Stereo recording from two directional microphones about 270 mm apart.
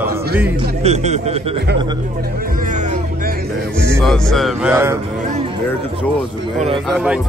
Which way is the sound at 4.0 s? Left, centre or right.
Centre.